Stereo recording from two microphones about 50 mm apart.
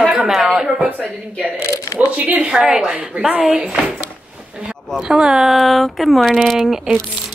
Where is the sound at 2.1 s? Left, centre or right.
Right.